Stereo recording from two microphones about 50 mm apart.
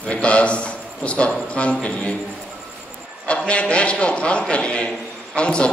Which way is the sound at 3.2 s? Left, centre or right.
Left.